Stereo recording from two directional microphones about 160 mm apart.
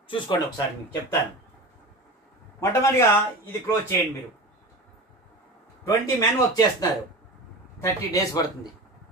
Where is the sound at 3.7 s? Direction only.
15° left (ahead or behind).